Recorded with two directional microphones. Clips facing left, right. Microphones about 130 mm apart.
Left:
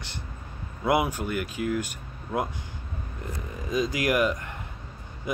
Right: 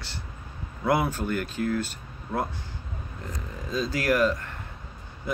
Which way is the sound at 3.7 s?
15° left (ahead or behind).